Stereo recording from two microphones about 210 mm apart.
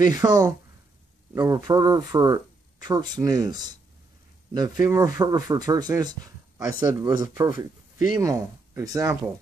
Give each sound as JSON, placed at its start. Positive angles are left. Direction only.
{"t": 0.0, "sound": "speech", "side_deg": -20}